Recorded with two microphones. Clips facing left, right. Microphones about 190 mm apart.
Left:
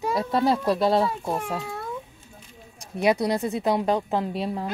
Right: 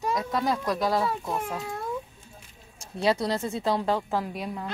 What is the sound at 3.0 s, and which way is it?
Speech, 15° left (ahead or behind).